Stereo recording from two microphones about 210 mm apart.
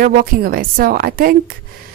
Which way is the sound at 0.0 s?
45° right (ahead or behind).